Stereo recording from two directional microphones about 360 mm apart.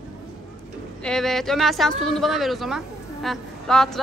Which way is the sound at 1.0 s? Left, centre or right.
Centre.